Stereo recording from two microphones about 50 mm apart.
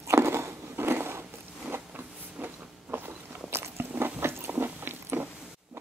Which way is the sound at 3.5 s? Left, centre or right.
Right.